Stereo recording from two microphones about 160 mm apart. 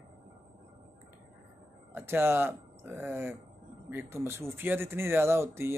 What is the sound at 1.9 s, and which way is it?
Speech, 15° right (ahead or behind).